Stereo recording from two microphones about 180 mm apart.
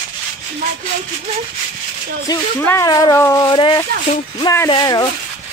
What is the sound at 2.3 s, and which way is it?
Speech, 20° left (ahead or behind).